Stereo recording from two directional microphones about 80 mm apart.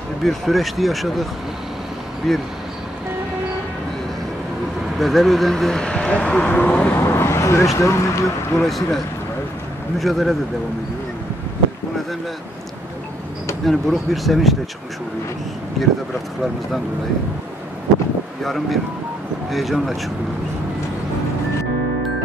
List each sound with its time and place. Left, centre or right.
0.2 s speech: centre
2.2 s speech: centre
4.9 s speech: centre
7.0 s speech: left
8.6 s speech: centre
13.7 s speech: centre
18.4 s speech: centre